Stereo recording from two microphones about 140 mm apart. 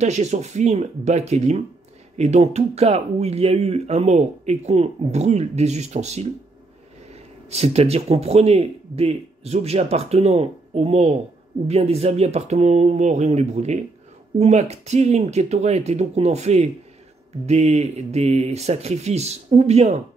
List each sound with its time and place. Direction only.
0.0 s speech: 55° right (ahead or behind)
7.4 s speech: 50° right (ahead or behind)